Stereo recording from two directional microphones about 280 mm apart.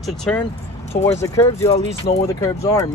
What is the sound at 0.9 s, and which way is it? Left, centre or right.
Speech, left.